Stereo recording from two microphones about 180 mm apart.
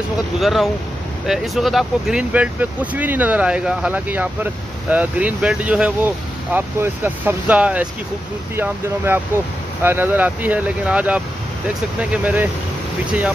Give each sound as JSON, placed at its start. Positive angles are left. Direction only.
{"t": 0.4, "sound": "speech", "side_deg": 0}